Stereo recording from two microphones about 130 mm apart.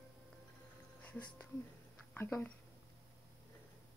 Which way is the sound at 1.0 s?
10° left (ahead or behind).